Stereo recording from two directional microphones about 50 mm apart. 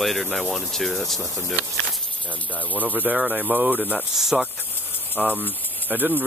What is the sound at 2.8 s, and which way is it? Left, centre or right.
Speech, right.